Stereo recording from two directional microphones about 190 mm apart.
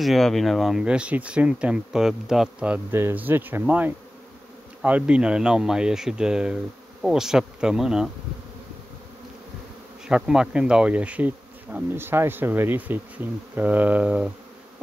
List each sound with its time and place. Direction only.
0.0 s speech: centre (ahead or behind)
10.0 s bee: 5° right (ahead or behind)